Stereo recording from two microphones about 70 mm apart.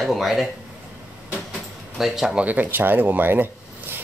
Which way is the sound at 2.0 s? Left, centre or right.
Centre.